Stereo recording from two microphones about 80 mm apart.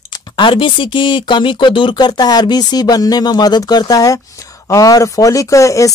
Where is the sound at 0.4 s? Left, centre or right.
Left.